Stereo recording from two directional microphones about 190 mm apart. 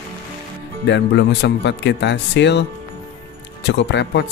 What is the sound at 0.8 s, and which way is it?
Speech, 70° left (ahead or behind).